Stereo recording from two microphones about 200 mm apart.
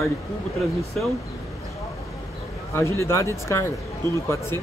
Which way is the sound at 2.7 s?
15° left (ahead or behind).